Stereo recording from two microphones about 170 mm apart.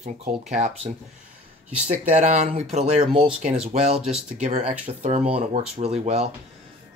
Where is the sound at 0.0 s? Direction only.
40° right (ahead or behind).